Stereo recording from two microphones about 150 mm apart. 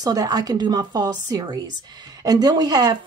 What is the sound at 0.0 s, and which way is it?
Speech, 25° right (ahead or behind).